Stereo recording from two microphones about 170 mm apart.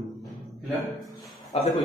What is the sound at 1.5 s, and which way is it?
Speech, 35° left (ahead or behind).